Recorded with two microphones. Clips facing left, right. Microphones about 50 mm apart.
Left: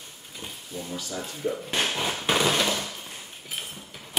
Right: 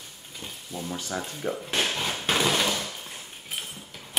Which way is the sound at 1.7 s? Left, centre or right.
Centre.